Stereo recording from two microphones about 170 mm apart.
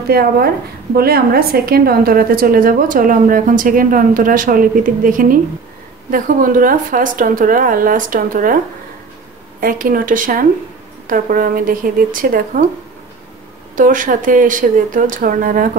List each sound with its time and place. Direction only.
0.1 s a woman's voice: 65° right (ahead or behind)
9.6 s a woman's voice: 55° right (ahead or behind)
13.7 s speech: 50° right (ahead or behind)